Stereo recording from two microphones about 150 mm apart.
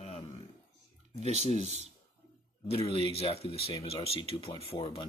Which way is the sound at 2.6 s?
40° left (ahead or behind).